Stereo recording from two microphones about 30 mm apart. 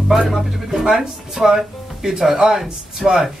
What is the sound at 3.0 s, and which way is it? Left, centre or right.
Speech, centre.